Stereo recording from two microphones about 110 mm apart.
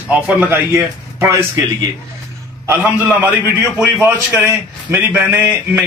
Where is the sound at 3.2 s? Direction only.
15° right (ahead or behind).